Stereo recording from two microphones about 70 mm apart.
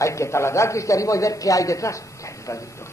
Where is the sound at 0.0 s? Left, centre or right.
Left.